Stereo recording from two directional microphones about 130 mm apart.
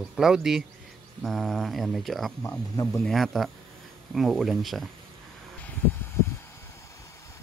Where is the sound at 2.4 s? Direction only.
25° left (ahead or behind).